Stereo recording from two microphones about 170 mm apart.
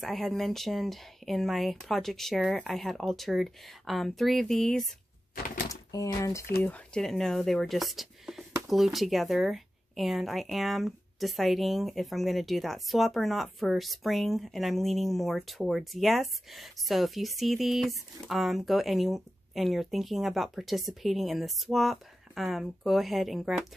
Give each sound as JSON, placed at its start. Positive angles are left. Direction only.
{"t": 0.0, "sound": "speech", "side_deg": 0}
{"t": 5.7, "sound": "speech", "side_deg": 20}
{"t": 6.6, "sound": "speech", "side_deg": 5}